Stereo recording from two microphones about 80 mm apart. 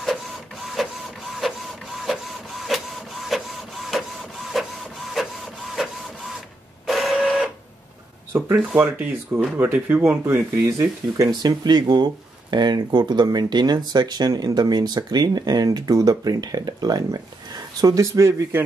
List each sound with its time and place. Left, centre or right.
0.0 s printer: centre
6.9 s printer: centre
8.3 s a sound: right
8.5 s speech: right
11.1 s speech: right